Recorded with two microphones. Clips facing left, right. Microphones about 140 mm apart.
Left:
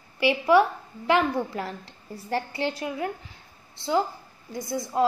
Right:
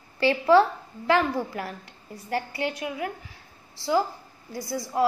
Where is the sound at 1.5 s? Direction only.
25° left (ahead or behind).